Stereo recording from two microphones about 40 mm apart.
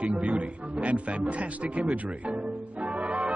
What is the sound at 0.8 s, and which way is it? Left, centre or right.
Speech, right.